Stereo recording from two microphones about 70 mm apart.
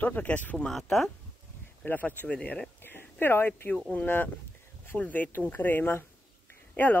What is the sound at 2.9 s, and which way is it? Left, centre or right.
Speech, left.